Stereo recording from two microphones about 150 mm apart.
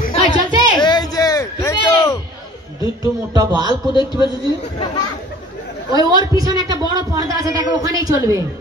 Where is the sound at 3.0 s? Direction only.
25° right (ahead or behind).